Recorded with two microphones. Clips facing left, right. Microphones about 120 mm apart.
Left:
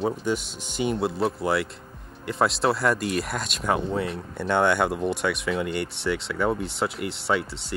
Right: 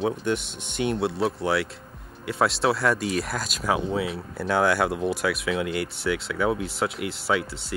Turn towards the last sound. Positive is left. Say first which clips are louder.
# even
turn(degrees=0)  # may be behind; listen again after turning